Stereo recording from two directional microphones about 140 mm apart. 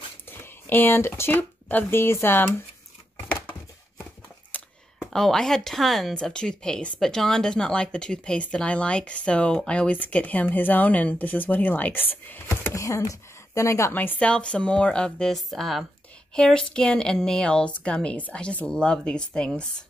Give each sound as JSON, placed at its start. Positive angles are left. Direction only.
{"t": 0.3, "sound": "speech", "side_deg": 15}
{"t": 3.2, "sound": "a sound", "side_deg": 15}
{"t": 4.5, "sound": "speech", "side_deg": 10}